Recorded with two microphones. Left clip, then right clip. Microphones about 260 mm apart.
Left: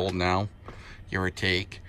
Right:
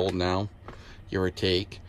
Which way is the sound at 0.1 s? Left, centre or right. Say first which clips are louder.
Left 1 dB; centre.